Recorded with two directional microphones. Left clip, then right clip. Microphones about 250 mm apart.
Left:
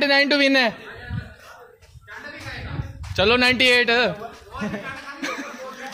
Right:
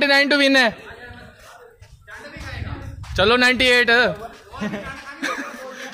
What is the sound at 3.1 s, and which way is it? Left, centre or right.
Speech, centre.